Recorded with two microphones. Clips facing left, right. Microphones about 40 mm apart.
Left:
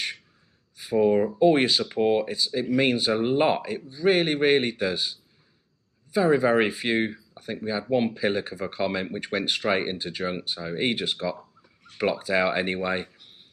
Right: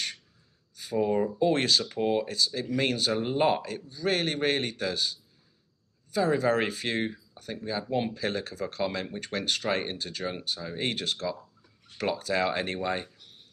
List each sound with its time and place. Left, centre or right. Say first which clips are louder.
0.7 s speech: left 5 dB; centre